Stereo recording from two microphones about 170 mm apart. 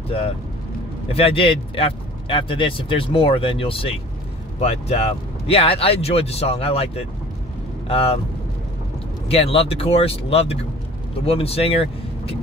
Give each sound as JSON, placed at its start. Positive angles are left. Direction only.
{"t": 1.0, "sound": "speech", "side_deg": 35}
{"t": 9.3, "sound": "speech", "side_deg": 35}